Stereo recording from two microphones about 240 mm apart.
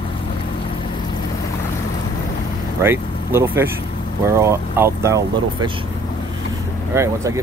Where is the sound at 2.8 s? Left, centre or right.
Centre.